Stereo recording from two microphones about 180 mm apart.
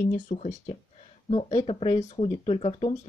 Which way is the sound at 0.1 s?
45° left (ahead or behind).